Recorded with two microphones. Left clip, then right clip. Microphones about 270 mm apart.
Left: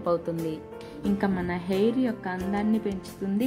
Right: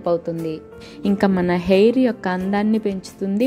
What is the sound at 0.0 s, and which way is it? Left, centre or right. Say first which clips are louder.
A woman's voice: right 6 dB; centre.